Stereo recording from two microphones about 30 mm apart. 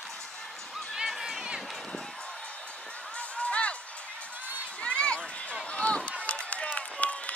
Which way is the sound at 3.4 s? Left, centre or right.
Left.